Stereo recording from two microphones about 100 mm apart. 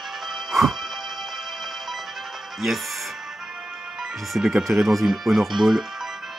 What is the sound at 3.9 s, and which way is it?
Speech, 5° right (ahead or behind).